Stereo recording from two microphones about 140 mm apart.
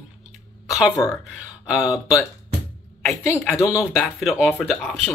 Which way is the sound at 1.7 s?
5° right (ahead or behind).